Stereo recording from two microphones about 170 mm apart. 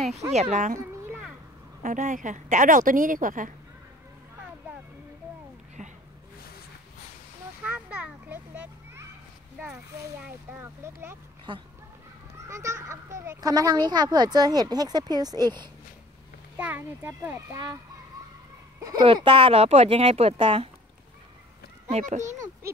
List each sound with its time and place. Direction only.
0.3 s speech: 40° right (ahead or behind)
1.8 s a woman's voice: 50° right (ahead or behind)
5.8 s a sound: 40° right (ahead or behind)
7.6 s a sound: 5° right (ahead or behind)
10.2 s speech: 15° right (ahead or behind)
11.5 s speech: 30° right (ahead or behind)
12.4 s speech: 15° right (ahead or behind)
16.5 s speech: 10° right (ahead or behind)
18.9 s speech: 25° right (ahead or behind)
21.9 s a woman's voice: 45° right (ahead or behind)